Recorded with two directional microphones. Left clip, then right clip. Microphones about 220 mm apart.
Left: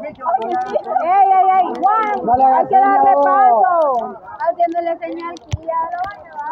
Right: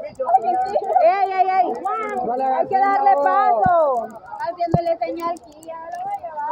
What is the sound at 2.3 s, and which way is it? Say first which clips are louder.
Speech: left 10 dB; 35° left (ahead or behind).